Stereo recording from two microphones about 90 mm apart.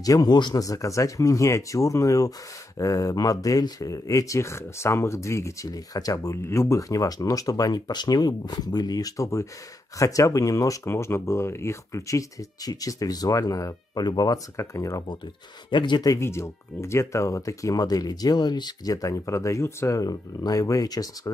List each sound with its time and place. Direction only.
0.0 s speech: 45° left (ahead or behind)
14.0 s speech: 50° left (ahead or behind)
14.6 s speech: 35° left (ahead or behind)
15.7 s speech: 60° left (ahead or behind)
16.1 s speech: 30° left (ahead or behind)